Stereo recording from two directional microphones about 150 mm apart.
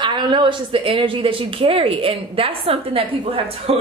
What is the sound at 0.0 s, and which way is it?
A woman's voice, 30° right (ahead or behind).